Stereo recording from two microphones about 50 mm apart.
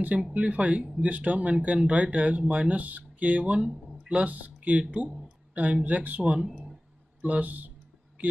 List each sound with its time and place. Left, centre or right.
0.3 s speech: right